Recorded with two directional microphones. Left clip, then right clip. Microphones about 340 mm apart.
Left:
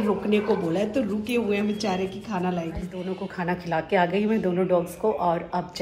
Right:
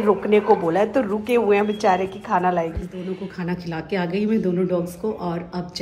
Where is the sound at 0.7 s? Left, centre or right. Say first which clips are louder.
Right 6 dB; centre.